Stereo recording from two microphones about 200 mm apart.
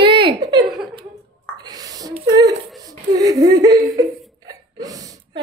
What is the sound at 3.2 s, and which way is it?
Whimper, 20° right (ahead or behind).